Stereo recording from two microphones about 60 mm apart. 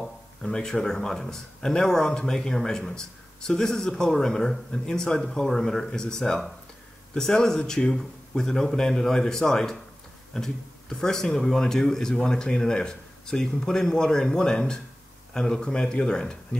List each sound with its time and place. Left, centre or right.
0.4 s speech: centre